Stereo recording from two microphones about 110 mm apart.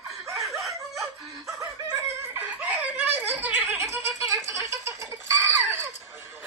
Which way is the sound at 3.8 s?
25° right (ahead or behind).